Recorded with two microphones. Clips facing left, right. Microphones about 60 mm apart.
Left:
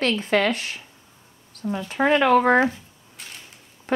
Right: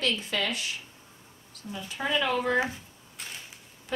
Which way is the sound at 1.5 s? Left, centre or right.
Left.